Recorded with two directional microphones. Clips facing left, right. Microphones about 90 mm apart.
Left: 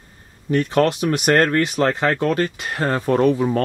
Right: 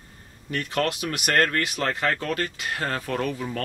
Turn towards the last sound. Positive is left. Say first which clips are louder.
# left 11 dB
turn(degrees=30)  # may be behind; listen again after turning